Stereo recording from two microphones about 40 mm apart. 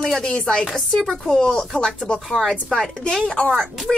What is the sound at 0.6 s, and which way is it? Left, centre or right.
Speech, centre.